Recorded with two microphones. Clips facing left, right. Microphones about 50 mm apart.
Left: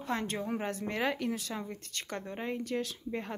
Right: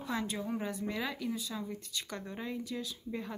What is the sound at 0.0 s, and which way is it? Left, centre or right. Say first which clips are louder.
Speech: left 2 dB; left.